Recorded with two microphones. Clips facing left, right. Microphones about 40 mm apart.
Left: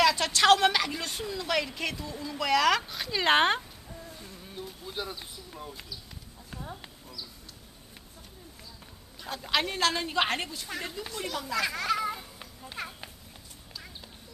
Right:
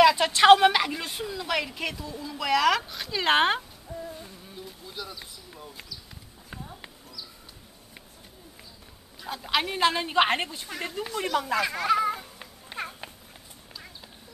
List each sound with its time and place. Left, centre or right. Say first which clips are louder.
0.0 s a woman's voice: right 5 dB; centre
4.0 s humming: right 6 dB; centre
4.5 s insect: left 2 dB; centre
9.2 s a woman's voice: right 2 dB; centre; by 11.6 s right
11.6 s a sound: right 5 dB; centre